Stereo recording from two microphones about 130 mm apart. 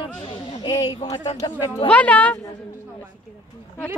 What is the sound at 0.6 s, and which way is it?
Speech, 30° left (ahead or behind).